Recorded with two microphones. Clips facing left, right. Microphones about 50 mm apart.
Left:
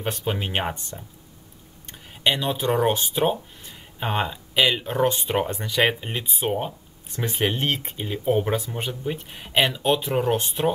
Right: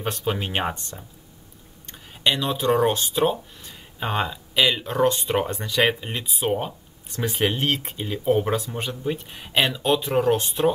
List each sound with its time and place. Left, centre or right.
0.0 s speech: centre
3.6 s a sound: centre
4.6 s speech: centre
5.7 s speech: centre
6.0 s speech: centre
10.0 s speech: centre